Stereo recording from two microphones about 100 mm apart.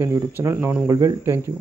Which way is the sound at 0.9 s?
35° right (ahead or behind).